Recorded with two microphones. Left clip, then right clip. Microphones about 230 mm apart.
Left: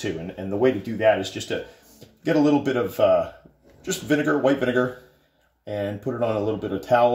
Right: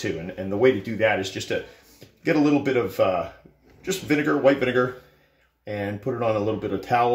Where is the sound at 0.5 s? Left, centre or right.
Centre.